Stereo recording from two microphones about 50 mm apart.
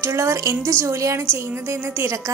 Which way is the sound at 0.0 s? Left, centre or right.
Right.